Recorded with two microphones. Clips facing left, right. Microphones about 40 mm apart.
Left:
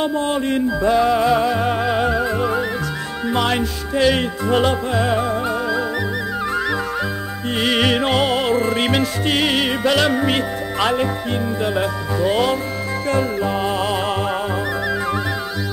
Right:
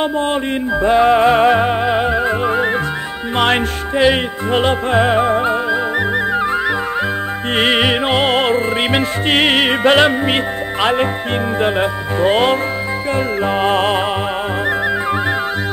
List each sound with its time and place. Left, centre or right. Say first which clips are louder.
0.0 s music: right 2 dB; right
1.6 s music: right 3 dB; right
3.3 s music: right 5 dB; right
3.9 s music: right 3 dB; right
7.5 s music: right 4 dB; right
7.8 s music: right 2 dB; right
8.3 s music: right 3 dB; right
9.3 s music: right 6 dB; right